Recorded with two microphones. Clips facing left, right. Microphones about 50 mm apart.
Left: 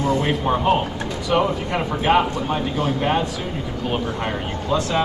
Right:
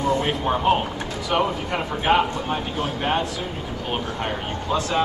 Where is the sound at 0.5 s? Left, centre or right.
Centre.